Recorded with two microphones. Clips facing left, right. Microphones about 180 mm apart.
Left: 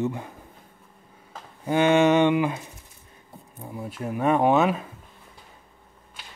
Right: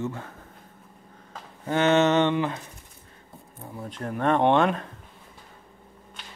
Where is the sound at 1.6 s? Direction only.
10° left (ahead or behind).